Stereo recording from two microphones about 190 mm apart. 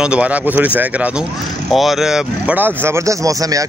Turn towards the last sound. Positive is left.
turn(degrees=-20)  # may be behind; listen again after turning